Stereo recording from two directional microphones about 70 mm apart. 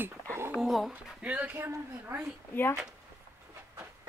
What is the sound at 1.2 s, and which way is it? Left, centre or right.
Speech, centre.